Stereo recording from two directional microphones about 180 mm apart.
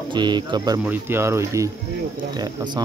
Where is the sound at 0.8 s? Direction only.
10° right (ahead or behind).